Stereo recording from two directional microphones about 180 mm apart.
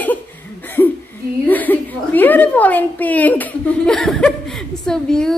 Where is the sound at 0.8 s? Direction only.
10° left (ahead or behind).